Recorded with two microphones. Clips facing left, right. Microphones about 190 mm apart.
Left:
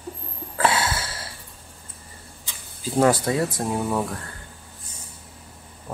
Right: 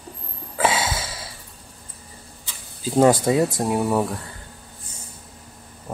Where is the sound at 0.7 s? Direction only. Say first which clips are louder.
Even; 90° right.